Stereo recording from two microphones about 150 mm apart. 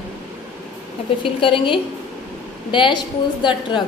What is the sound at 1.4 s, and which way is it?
A woman's voice, 35° left (ahead or behind).